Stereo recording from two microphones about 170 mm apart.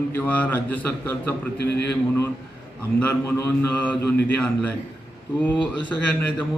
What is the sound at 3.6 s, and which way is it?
A man's voice, 10° left (ahead or behind).